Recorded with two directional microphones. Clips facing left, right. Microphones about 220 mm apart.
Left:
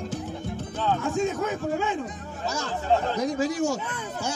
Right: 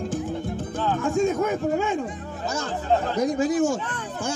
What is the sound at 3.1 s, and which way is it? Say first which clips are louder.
Speech: right 4 dB; 50° right (ahead or behind).